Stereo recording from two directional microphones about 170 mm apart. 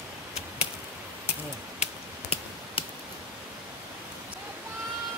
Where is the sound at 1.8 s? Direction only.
35° left (ahead or behind).